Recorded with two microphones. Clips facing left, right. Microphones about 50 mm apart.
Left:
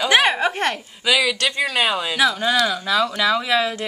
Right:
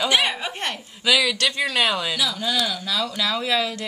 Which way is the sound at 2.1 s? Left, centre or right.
Left.